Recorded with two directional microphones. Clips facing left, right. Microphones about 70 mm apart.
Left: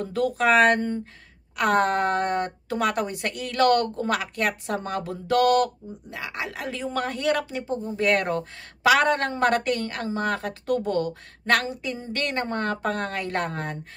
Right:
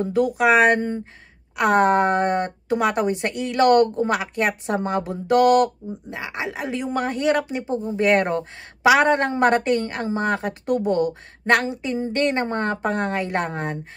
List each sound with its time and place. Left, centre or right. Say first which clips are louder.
0.0 s speech: right 4 dB; centre